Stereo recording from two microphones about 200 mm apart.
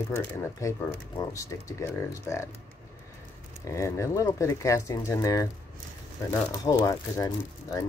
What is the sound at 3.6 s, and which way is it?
Speech, 15° left (ahead or behind).